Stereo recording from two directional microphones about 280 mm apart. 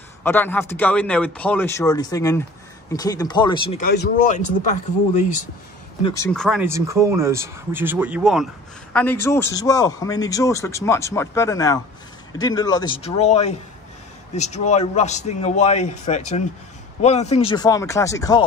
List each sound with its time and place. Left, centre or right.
0.2 s a man's voice: centre
3.8 s a man's voice: left
6.0 s a man's voice: centre